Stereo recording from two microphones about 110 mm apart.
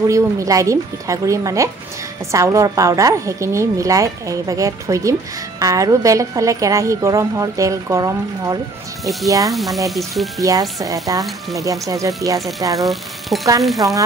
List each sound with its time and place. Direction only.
0.1 s a woman's voice: 30° right (ahead or behind)
9.5 s frying: centre (ahead or behind)
10.4 s speech: 30° right (ahead or behind)
12.4 s frying: centre (ahead or behind)
12.7 s speech: centre (ahead or behind)
13.6 s frying: centre (ahead or behind)